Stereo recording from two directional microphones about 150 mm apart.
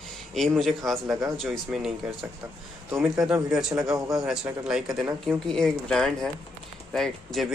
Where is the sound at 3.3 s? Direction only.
5° right (ahead or behind).